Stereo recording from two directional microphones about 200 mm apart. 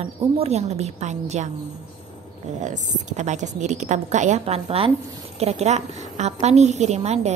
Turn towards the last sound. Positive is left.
turn(degrees=-35)  # may be behind; listen again after turning